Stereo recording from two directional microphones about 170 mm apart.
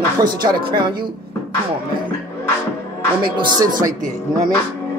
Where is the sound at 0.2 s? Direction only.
25° right (ahead or behind).